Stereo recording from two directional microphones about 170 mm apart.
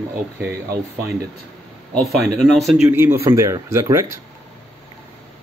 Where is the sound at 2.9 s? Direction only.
10° right (ahead or behind).